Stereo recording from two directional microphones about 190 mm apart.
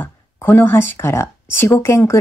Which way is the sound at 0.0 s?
10° left (ahead or behind).